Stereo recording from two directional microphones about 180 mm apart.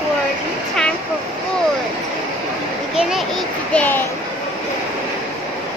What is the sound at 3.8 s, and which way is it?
Speech, 10° left (ahead or behind).